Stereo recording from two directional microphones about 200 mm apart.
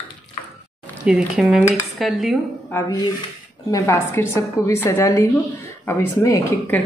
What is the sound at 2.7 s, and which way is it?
A woman's voice, 15° left (ahead or behind).